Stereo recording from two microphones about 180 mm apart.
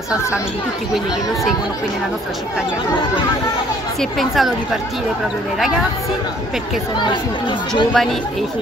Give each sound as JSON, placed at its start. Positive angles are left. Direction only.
{"t": 4.0, "sound": "speech", "side_deg": 0}
{"t": 7.0, "sound": "speech", "side_deg": 25}
{"t": 7.9, "sound": "speech", "side_deg": 0}